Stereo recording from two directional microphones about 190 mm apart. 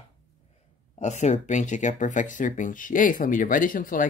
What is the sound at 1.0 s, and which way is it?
Speech, 40° left (ahead or behind).